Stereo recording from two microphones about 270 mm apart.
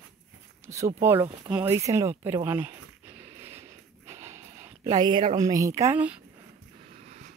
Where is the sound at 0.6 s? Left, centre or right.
Centre.